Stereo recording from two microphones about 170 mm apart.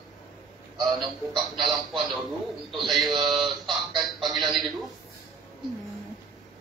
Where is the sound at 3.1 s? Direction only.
25° right (ahead or behind).